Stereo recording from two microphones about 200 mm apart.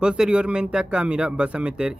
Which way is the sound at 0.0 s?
5° right (ahead or behind).